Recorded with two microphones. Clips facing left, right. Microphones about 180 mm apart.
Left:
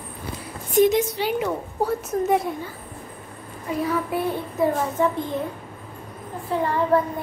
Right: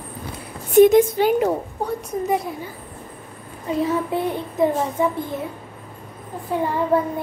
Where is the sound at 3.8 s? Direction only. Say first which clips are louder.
Right 1 dB; 25° right (ahead or behind).